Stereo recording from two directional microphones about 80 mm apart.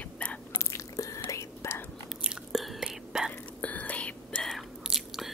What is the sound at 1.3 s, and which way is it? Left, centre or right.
Whispering, left.